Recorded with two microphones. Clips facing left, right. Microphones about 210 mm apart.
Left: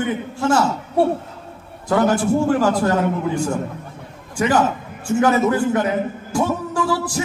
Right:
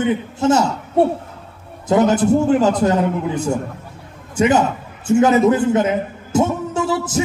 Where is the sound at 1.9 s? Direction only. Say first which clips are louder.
Right 3 dB; 20° right (ahead or behind).